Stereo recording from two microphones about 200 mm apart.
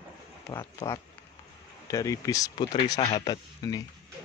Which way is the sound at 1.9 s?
15° left (ahead or behind).